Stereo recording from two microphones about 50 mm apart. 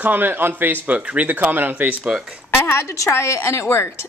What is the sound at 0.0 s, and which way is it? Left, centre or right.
Speech, right.